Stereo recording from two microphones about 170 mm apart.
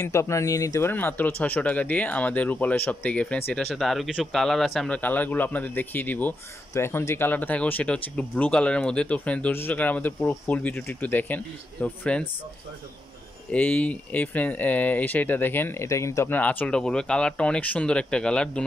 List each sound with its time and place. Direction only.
0.0 s speech: 15° left (ahead or behind)
13.5 s speech: 10° left (ahead or behind)